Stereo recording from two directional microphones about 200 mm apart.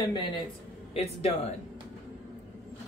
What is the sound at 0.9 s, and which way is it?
Speech, 30° left (ahead or behind).